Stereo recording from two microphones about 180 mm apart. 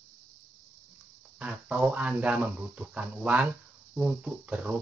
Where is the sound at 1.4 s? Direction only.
10° right (ahead or behind).